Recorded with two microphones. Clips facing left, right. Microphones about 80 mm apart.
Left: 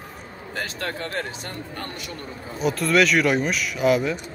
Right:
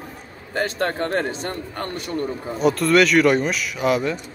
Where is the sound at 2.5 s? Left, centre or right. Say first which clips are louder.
Right 3 dB; centre.